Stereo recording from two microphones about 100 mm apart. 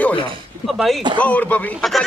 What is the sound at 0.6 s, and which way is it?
Speech, centre (ahead or behind).